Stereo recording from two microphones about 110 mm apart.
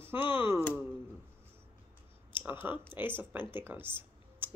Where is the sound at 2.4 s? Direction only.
15° right (ahead or behind).